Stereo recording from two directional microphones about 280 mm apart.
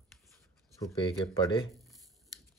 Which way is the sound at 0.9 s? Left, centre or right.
Centre.